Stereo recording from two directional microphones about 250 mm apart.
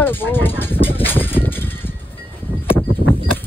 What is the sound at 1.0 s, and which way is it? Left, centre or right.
Vehicle, centre.